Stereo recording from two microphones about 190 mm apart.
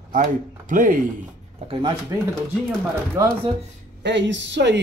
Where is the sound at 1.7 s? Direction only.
25° right (ahead or behind).